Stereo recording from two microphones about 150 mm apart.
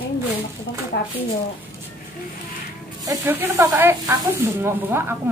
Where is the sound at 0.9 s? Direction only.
90° left.